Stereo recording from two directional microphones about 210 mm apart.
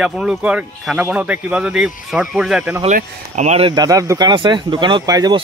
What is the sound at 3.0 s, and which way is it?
Speech, 35° right (ahead or behind).